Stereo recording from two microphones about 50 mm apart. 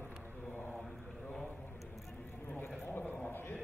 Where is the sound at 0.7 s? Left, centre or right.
Centre.